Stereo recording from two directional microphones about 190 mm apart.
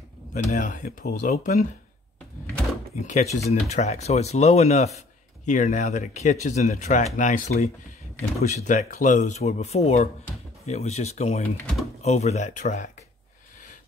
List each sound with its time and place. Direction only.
0.3 s speech: 45° left (ahead or behind)
3.0 s speech: 40° left (ahead or behind)